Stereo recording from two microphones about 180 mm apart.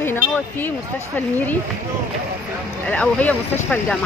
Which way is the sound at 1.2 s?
10° left (ahead or behind).